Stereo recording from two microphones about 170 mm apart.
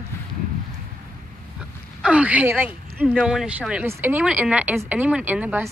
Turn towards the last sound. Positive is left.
turn(degrees=-10)  # may be behind; listen again after turning